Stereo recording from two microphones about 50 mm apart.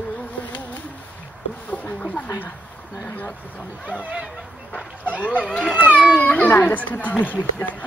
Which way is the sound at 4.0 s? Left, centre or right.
Right.